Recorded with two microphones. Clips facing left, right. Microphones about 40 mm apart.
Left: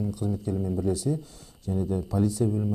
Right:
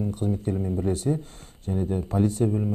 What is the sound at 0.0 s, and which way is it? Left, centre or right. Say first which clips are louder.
Speech: right 2 dB; right.